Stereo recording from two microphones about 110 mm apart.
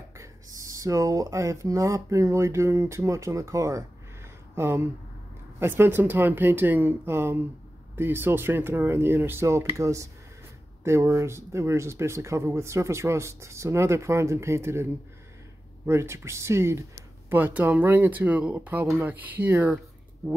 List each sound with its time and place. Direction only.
0.2 s speech: 30° right (ahead or behind)